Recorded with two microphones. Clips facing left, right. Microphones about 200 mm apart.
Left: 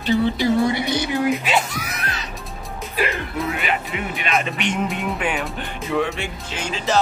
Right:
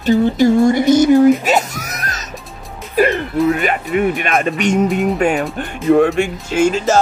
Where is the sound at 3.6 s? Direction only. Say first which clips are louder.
Right 9 dB; 50° right (ahead or behind).